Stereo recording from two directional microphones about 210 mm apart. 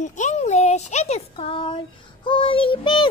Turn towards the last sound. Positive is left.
turn(degrees=25)  # may be behind; listen again after turning